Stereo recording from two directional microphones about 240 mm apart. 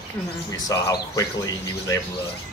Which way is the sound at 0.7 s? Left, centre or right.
Centre.